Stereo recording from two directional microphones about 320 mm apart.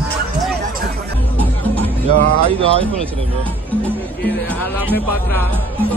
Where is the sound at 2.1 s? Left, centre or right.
Right.